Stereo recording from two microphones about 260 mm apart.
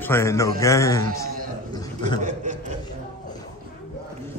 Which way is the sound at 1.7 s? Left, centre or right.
Centre.